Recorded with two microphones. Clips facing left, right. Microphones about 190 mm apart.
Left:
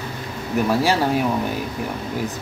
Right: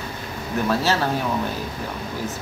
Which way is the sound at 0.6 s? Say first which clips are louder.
Left 2 dB; 15° left (ahead or behind).